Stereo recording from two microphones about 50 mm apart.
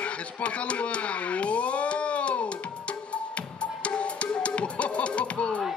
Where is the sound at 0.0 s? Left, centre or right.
Left.